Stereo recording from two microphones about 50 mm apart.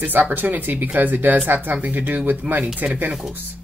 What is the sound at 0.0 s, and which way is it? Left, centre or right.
Speech, right.